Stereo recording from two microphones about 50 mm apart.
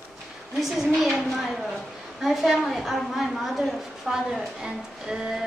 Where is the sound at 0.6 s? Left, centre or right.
Centre.